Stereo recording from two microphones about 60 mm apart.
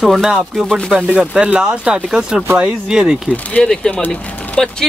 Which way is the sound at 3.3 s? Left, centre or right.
Centre.